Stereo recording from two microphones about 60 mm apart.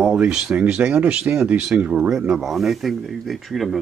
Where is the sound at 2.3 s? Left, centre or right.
Centre.